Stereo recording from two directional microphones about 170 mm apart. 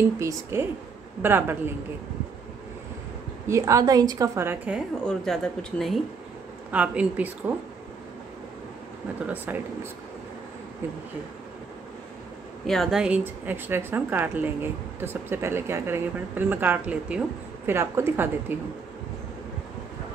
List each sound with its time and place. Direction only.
0.2 s a woman's voice: 15° right (ahead or behind)
3.4 s a woman's voice: 15° right (ahead or behind)
5.0 s a woman's voice: 5° left (ahead or behind)
9.5 s a woman's voice: 10° right (ahead or behind)
12.6 s a woman's voice: centre (ahead or behind)